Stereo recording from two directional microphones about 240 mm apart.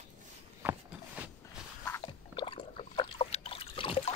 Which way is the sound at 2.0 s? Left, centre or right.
Left.